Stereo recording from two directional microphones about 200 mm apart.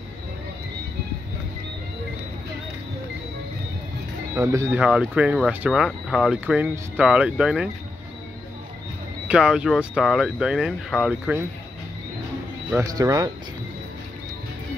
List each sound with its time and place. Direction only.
4.4 s speech: 15° right (ahead or behind)
9.3 s speech: 5° right (ahead or behind)
12.7 s speech: 15° right (ahead or behind)